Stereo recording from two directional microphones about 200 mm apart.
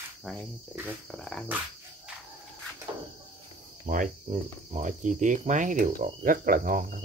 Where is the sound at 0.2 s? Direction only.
Centre (ahead or behind).